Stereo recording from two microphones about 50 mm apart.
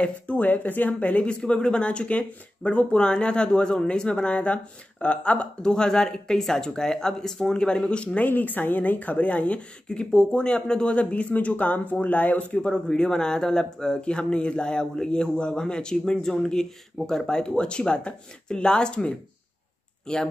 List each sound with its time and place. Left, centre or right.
0.0 s speech: left
8.3 s speech: left
12.5 s speech: centre